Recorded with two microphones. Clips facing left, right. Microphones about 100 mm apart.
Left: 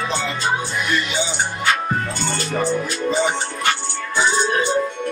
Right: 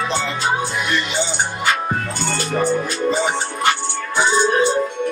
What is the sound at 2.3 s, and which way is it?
Music, 5° right (ahead or behind).